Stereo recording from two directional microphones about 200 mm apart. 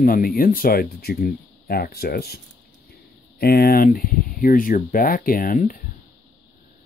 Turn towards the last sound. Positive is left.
turn(degrees=45)  # may be behind; listen again after turning